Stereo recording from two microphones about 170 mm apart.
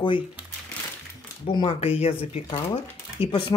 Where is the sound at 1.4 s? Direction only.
35° left (ahead or behind).